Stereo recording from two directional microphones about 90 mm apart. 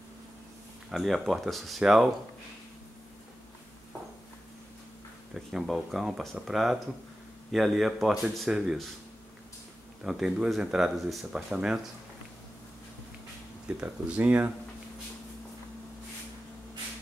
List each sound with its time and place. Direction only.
0.8 s speech: centre (ahead or behind)
5.3 s speech: 5° right (ahead or behind)
10.0 s speech: 5° right (ahead or behind)
13.7 s speech: 15° right (ahead or behind)